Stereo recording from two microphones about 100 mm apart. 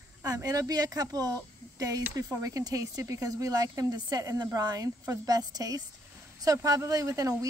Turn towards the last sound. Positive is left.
turn(degrees=-35)  # may be behind; listen again after turning